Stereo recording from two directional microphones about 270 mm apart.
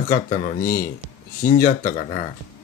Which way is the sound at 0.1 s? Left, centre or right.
Left.